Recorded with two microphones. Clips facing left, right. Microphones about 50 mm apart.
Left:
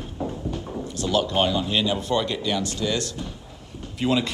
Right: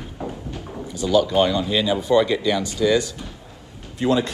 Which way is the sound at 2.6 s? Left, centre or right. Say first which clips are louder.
Right 7 dB; centre.